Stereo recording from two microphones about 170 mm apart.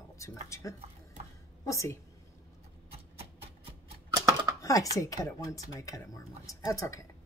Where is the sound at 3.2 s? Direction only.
35° right (ahead or behind).